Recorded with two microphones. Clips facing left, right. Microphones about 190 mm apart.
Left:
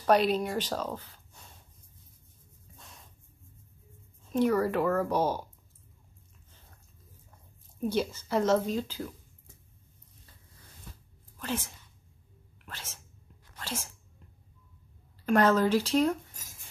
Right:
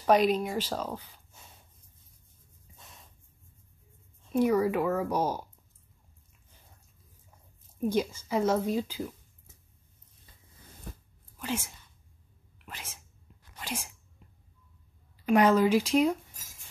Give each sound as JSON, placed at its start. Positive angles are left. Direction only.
{"t": 0.0, "sound": "speech", "side_deg": -10}
{"t": 2.8, "sound": "a sound", "side_deg": 0}
{"t": 4.3, "sound": "speech", "side_deg": -10}
{"t": 7.9, "sound": "speech", "side_deg": -10}
{"t": 10.9, "sound": "a sound", "side_deg": -50}
{"t": 11.3, "sound": "speech", "side_deg": -10}
{"t": 15.2, "sound": "speech", "side_deg": -10}